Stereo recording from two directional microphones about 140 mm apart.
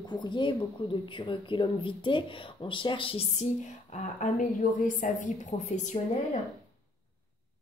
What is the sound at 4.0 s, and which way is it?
A woman's voice, 60° left (ahead or behind).